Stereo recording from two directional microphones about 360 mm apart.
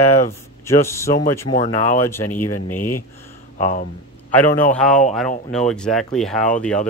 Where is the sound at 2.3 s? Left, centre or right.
Left.